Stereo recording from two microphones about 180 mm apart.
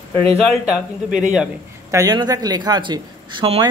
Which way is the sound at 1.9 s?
20° right (ahead or behind).